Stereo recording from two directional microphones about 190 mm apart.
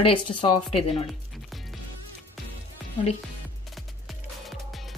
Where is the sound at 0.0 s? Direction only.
30° left (ahead or behind).